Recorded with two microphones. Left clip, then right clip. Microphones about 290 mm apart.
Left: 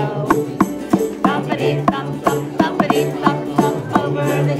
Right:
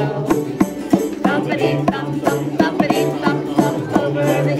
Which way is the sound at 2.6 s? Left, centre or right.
Centre.